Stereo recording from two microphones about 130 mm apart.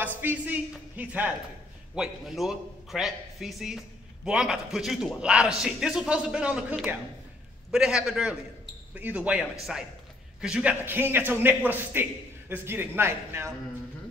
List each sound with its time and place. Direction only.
0.2 s a man's voice: 15° right (ahead or behind)